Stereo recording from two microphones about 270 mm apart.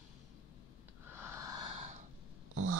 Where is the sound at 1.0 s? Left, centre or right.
Centre.